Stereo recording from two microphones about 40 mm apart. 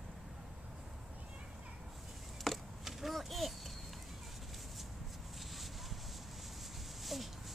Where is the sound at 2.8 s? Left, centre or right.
Centre.